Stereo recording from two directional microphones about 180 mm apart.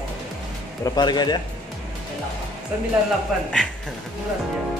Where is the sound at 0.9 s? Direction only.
25° left (ahead or behind).